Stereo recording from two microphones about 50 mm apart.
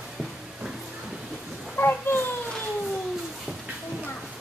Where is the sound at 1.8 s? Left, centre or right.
Left.